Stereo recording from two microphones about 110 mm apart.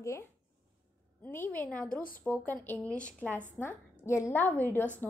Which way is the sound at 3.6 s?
25° left (ahead or behind).